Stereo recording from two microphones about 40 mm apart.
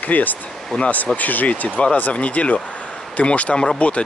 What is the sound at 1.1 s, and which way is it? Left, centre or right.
Speech, left.